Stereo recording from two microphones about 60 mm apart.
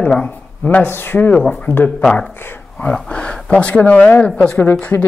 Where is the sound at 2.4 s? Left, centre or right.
Left.